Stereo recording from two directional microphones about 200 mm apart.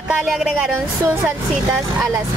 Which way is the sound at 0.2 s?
Centre (ahead or behind).